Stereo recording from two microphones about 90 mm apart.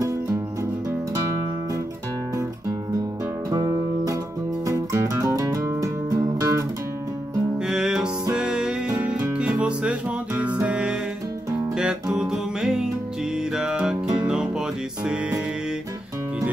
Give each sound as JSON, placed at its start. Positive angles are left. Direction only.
{"t": 3.5, "sound": "music", "side_deg": -40}
{"t": 7.5, "sound": "music", "side_deg": -5}